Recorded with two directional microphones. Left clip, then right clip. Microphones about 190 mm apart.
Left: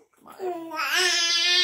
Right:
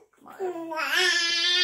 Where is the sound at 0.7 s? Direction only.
45° left (ahead or behind).